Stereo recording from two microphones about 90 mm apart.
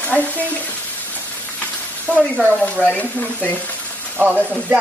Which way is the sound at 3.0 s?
20° left (ahead or behind).